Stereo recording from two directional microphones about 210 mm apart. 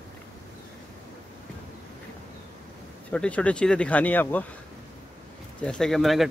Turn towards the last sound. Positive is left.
turn(degrees=0)  # may be behind; listen again after turning